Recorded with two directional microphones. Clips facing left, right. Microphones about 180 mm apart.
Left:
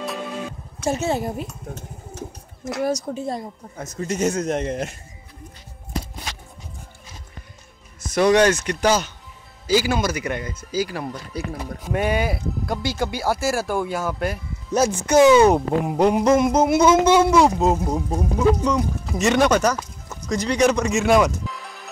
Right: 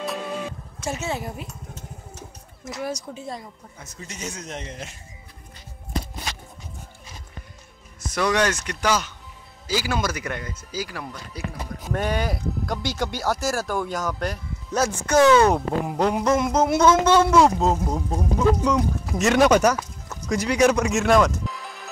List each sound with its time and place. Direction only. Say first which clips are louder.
0.8 s a woman's voice: left 6 dB; 40° left (ahead or behind)
2.7 s speech: left 7 dB; 45° left (ahead or behind)
8.1 s speech: left 6 dB; 25° left (ahead or behind)
11.9 s speech: left 3 dB; 10° left (ahead or behind)
14.7 s speech: left 3 dB; 15° left (ahead or behind)
18.6 s a man's voice: even; 5° right (ahead or behind)
21.1 s music: left 1 dB; 5° left (ahead or behind)